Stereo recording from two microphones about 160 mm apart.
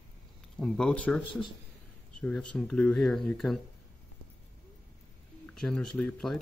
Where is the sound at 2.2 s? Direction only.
5° left (ahead or behind).